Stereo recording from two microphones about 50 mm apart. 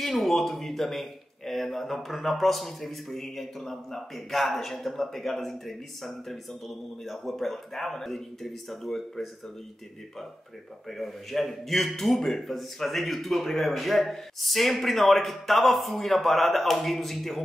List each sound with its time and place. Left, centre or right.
0.0 s a man's voice: centre
10.9 s a man's voice: centre